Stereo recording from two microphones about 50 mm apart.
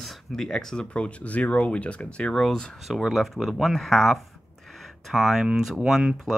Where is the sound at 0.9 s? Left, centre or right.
Left.